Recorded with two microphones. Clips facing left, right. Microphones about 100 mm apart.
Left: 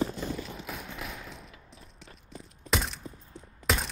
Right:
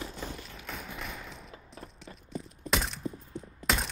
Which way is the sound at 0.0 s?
30° left (ahead or behind).